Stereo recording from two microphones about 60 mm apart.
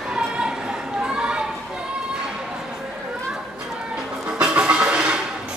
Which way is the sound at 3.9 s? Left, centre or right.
Centre.